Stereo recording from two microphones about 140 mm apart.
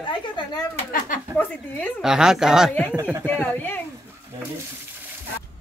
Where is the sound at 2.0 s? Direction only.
5° right (ahead or behind).